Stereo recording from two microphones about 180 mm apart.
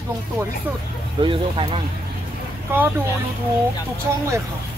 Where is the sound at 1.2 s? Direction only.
30° right (ahead or behind).